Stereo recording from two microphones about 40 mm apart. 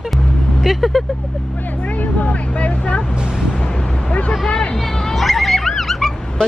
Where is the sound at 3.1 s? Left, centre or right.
Centre.